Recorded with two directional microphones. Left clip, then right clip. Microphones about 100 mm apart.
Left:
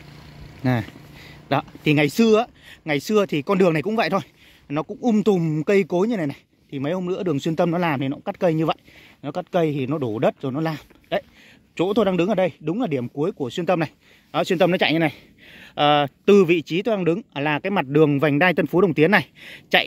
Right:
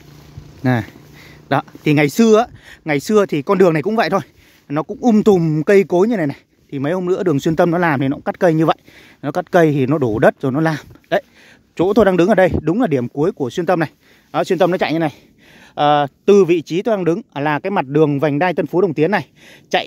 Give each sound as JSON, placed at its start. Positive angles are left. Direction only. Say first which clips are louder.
{"t": 0.7, "sound": "speech", "louder": "right 5 dB", "side_deg": -30}
{"t": 4.8, "sound": "speech", "louder": "right 7 dB", "side_deg": -55}
{"t": 5.5, "sound": "speech", "louder": "right 7 dB", "side_deg": -40}
{"t": 8.1, "sound": "speech", "louder": "right 6 dB", "side_deg": -50}
{"t": 14.7, "sound": "speech", "louder": "right 2 dB", "side_deg": -10}
{"t": 16.6, "sound": "speech", "louder": "right 4 dB", "side_deg": -25}